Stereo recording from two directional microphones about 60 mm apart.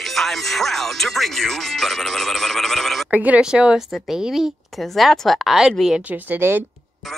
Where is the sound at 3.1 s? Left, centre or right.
Right.